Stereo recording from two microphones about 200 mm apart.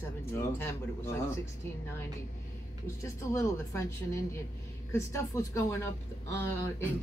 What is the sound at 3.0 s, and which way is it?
A woman's voice, 15° left (ahead or behind).